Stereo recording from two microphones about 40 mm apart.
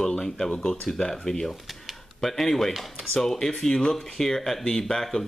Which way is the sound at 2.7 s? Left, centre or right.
Centre.